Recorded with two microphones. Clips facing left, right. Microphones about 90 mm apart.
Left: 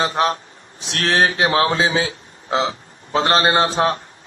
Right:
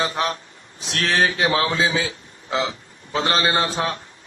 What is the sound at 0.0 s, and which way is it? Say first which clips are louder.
A man's voice: left 4 dB; 35° left (ahead or behind).